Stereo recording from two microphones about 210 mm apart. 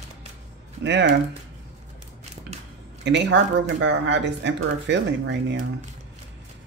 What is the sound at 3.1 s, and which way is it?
Speech, 55° right (ahead or behind).